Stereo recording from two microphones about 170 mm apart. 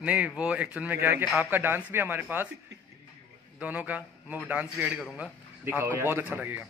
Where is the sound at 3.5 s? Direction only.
10° right (ahead or behind).